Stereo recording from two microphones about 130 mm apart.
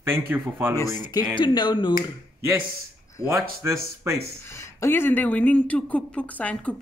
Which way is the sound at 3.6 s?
20° right (ahead or behind).